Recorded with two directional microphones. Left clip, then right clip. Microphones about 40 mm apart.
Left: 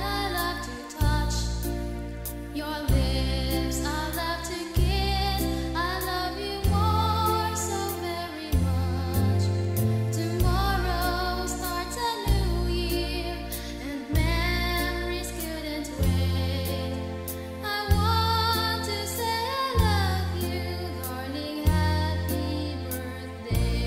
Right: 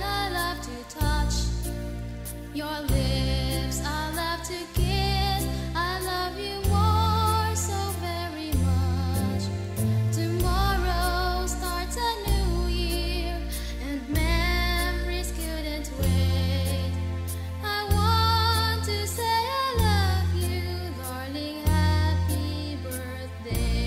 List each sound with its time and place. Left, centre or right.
0.0 s music: centre
3.0 s music: centre
10.4 s music: centre
17.9 s music: centre
21.6 s music: centre